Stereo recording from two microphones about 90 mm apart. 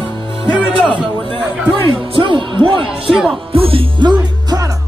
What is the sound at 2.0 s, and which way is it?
Speech, 65° right (ahead or behind).